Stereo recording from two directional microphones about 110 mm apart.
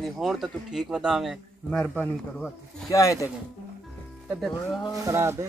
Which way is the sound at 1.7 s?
10° left (ahead or behind).